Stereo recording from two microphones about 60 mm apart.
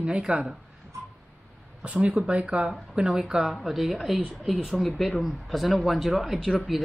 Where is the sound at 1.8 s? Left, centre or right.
Right.